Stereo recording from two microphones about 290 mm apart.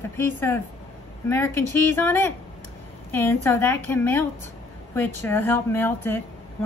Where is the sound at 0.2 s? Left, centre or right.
Centre.